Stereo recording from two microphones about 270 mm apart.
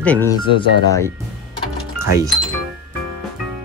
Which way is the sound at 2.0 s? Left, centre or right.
Centre.